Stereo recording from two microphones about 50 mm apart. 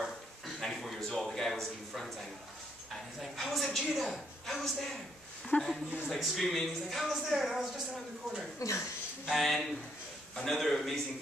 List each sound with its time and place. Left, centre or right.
0.6 s a sound: centre
3.2 s a sound: centre
5.5 s speech: left
6.0 s speech: centre
8.5 s speech: left
9.2 s a man's voice: centre